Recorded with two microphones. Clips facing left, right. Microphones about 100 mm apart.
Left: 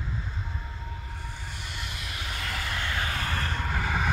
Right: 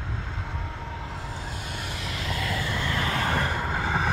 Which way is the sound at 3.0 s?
70° right (ahead or behind).